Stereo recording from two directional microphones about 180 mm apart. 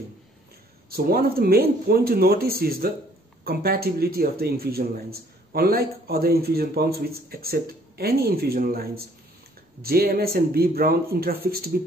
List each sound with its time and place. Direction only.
0.8 s a man's voice: 60° right (ahead or behind)